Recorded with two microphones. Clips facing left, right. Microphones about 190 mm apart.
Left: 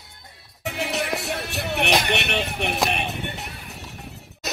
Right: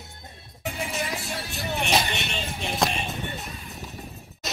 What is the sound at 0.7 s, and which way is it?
Music, 70° left (ahead or behind).